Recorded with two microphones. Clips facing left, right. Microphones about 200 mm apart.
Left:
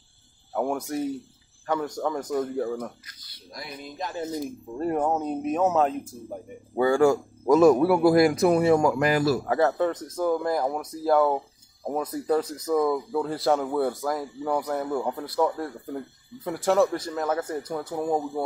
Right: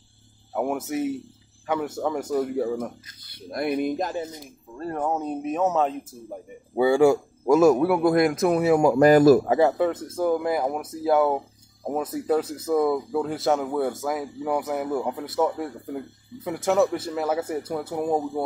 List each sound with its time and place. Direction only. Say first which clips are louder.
0.5 s speech: right 1 dB; 5° right (ahead or behind)
3.3 s speech: right 14 dB; 60° right (ahead or behind)
4.7 s speech: left 4 dB; 15° left (ahead or behind)
5.0 s a man's voice: left 1 dB; centre (ahead or behind)
6.7 s a man's voice: right 2 dB; 15° right (ahead or behind)
8.9 s a man's voice: right 8 dB; 45° right (ahead or behind)
9.5 s a man's voice: right 3 dB; 10° right (ahead or behind)
13.2 s a man's voice: left 1 dB; centre (ahead or behind)